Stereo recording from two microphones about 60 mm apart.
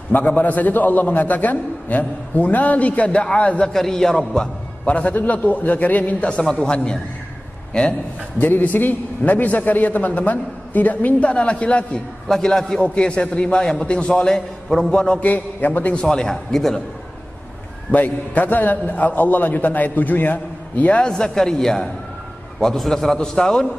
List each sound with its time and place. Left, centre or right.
0.1 s a man's voice: left
3.7 s a man's voice: centre
8.4 s a man's voice: left
12.3 s a man's voice: centre; by 16.0 s left
16.0 s a man's voice: centre
17.9 s a man's voice: left
21.0 s a man's voice: centre